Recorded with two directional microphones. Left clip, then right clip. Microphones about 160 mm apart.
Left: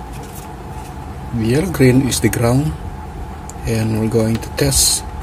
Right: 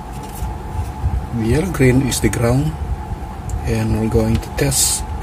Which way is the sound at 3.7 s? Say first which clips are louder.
Left 1 dB; 10° left (ahead or behind).